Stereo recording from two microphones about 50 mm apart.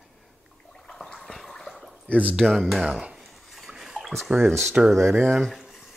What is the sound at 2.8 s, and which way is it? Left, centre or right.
Speech, centre.